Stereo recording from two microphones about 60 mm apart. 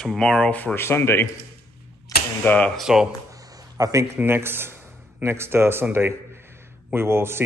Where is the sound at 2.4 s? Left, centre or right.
Left.